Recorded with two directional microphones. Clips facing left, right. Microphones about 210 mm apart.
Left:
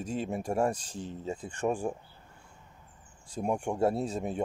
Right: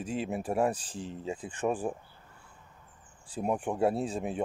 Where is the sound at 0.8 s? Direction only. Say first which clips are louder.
Even; 35° right (ahead or behind).